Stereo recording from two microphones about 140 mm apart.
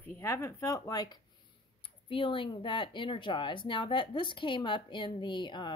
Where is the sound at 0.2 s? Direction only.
20° left (ahead or behind).